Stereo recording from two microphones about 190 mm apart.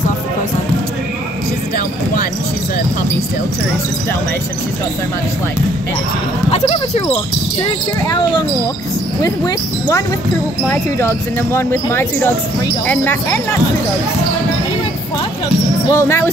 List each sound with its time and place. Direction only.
8.1 s speech: 20° left (ahead or behind)
10.7 s speech: 15° left (ahead or behind)
15.9 s speech: 15° left (ahead or behind)